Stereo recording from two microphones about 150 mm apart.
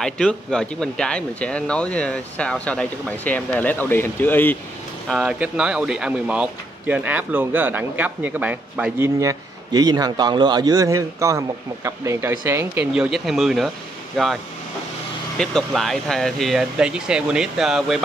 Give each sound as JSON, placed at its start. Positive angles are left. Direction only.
{"t": 0.0, "sound": "speech", "side_deg": 5}
{"t": 5.0, "sound": "speech", "side_deg": 0}
{"t": 9.2, "sound": "a man's voice", "side_deg": -25}
{"t": 12.9, "sound": "speech", "side_deg": -5}